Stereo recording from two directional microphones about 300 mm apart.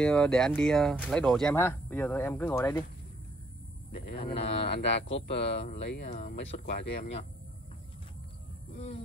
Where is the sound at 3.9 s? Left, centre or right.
Left.